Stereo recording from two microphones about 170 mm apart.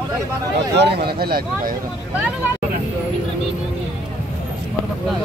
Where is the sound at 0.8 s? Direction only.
75° right (ahead or behind).